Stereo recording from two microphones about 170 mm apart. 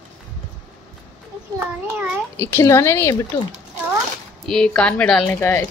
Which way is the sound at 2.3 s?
15° left (ahead or behind).